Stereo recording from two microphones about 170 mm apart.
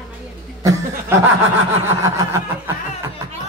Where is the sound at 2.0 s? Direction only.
20° right (ahead or behind).